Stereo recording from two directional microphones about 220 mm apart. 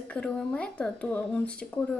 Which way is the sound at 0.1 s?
5° left (ahead or behind).